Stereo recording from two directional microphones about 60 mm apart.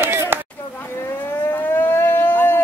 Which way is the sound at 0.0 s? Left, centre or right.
Right.